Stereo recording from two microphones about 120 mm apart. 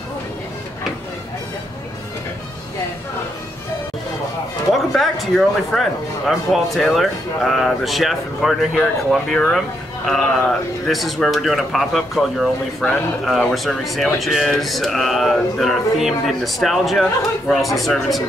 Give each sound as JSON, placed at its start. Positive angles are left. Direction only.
{"t": 4.7, "sound": "speech", "side_deg": 0}